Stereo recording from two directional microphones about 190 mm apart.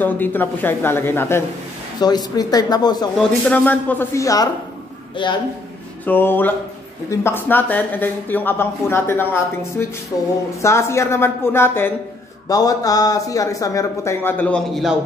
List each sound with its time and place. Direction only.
0.0 s speech: 10° left (ahead or behind)
3.2 s speech: 5° left (ahead or behind); by 5.4 s 25° left (ahead or behind)
6.0 s speech: 10° left (ahead or behind)